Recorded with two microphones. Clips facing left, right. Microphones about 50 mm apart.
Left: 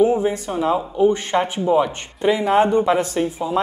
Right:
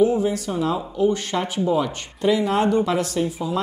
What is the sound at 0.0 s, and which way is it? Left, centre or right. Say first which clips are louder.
Speech: left 2 dB; left.